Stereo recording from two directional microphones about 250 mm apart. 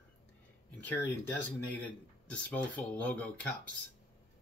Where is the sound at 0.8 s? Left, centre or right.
Centre.